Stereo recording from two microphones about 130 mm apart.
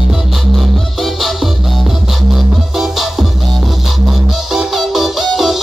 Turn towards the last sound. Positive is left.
turn(degrees=0)  # may be behind; listen again after turning